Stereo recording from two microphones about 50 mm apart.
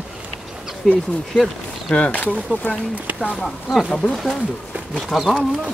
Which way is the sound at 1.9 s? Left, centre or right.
Left.